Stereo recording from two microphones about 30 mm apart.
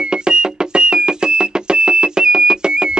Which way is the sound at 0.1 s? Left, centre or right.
Right.